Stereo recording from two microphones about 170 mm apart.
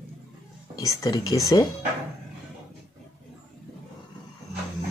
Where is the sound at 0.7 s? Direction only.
20° left (ahead or behind).